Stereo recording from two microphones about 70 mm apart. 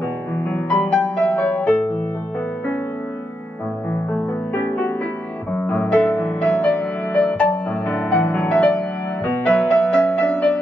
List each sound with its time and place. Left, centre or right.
0.5 s music: left
4.6 s music: left